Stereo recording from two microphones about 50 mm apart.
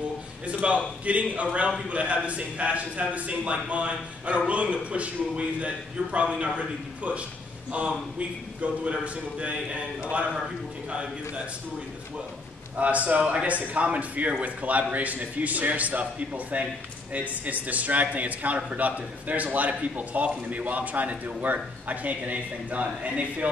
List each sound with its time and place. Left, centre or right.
0.5 s a man's voice: right
10.9 s a man's voice: right
12.7 s a man's voice: right